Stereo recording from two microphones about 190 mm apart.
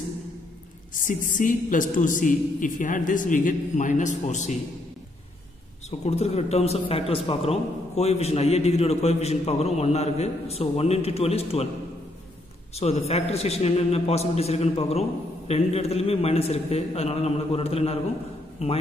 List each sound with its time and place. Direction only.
0.9 s a woman's voice: 45° left (ahead or behind)
5.9 s speech: 35° left (ahead or behind)
12.7 s speech: 35° left (ahead or behind)